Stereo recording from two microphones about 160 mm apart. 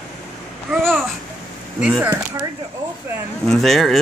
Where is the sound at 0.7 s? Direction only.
5° left (ahead or behind).